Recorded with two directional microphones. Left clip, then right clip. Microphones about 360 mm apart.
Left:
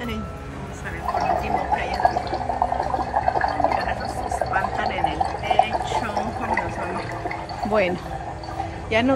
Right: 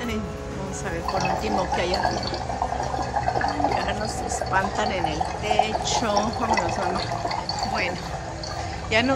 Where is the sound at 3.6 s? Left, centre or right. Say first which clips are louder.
Left 2 dB; centre.